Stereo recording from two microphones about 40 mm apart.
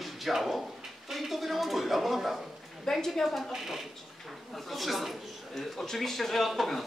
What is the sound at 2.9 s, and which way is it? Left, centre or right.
Speech, centre.